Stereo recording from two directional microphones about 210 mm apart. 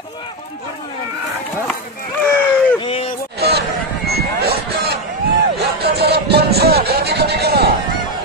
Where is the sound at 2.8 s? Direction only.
25° left (ahead or behind).